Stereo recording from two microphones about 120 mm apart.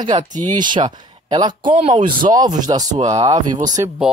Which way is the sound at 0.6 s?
40° right (ahead or behind).